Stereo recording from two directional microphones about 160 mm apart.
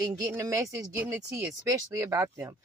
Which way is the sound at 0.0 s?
20° right (ahead or behind).